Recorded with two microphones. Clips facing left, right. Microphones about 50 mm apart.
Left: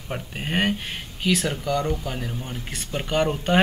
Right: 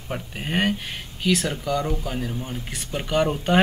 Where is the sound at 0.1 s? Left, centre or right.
Centre.